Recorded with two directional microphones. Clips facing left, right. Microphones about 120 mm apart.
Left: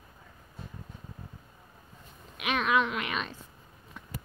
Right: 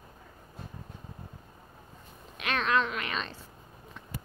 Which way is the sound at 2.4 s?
10° left (ahead or behind).